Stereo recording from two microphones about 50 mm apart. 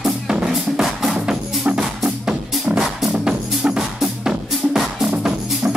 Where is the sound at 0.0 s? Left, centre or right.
Centre.